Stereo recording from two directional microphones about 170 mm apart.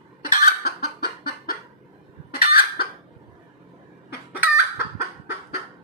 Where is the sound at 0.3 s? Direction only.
60° left (ahead or behind).